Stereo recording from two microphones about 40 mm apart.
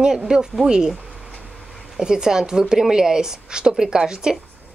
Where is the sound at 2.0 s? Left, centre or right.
Centre.